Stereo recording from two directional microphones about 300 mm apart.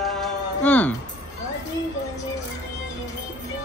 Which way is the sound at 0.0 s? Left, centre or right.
Centre.